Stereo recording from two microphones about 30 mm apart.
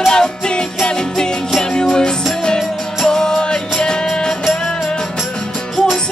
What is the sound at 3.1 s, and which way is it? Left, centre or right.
Music, left.